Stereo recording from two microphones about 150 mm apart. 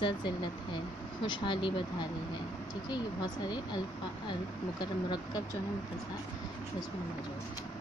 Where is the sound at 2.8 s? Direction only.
30° left (ahead or behind).